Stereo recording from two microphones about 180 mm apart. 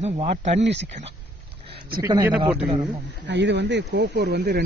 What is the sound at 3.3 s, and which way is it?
Speech, 75° right (ahead or behind).